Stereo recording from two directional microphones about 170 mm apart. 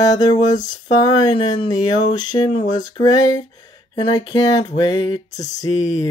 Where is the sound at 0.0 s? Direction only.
20° left (ahead or behind).